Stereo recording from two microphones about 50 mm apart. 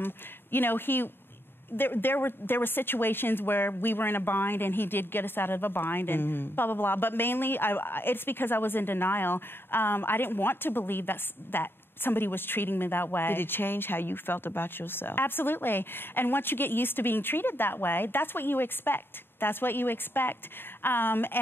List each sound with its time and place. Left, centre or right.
0.0 s a woman's voice: left